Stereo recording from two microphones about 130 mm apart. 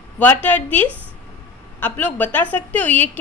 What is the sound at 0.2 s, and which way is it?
A woman's voice, 15° left (ahead or behind).